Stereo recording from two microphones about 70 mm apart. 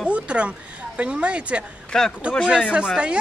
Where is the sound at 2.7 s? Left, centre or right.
Centre.